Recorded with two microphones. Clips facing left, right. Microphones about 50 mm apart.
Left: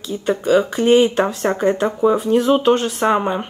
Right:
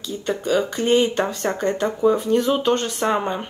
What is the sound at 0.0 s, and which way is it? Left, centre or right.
Speech, centre.